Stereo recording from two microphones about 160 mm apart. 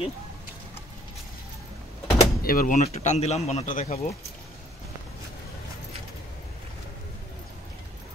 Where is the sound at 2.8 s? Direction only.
45° left (ahead or behind).